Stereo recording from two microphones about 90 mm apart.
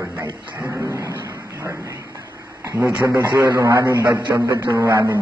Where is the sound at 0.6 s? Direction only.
30° right (ahead or behind).